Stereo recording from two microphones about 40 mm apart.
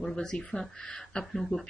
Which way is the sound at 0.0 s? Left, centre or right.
Centre.